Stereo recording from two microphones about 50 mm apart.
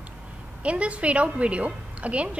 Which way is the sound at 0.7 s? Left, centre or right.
Right.